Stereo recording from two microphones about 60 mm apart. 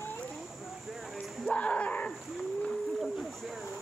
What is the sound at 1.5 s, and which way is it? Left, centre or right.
Speech, left.